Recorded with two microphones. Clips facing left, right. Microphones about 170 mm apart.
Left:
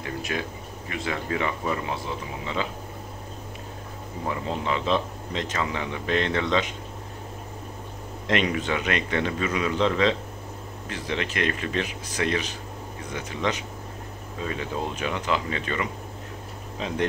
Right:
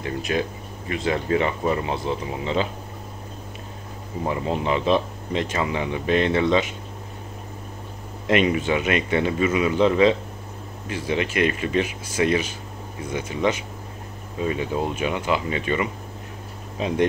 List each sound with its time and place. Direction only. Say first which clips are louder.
0.8 s speech: right 6 dB; 25° right (ahead or behind)
4.3 s speech: right 4 dB; 15° right (ahead or behind)
8.3 s speech: right 5 dB; 10° right (ahead or behind)